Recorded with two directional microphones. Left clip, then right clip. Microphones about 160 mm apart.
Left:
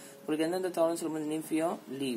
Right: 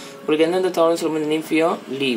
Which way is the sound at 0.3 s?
10° left (ahead or behind).